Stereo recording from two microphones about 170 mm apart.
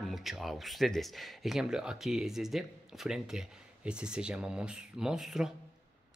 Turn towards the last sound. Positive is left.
turn(degrees=-5)  # may be behind; listen again after turning